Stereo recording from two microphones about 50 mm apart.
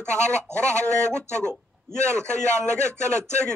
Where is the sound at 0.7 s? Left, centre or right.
Right.